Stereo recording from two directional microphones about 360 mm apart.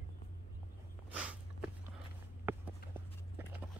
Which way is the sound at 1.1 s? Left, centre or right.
Centre.